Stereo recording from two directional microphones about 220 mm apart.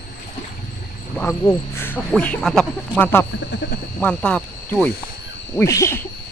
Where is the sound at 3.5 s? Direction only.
50° left (ahead or behind).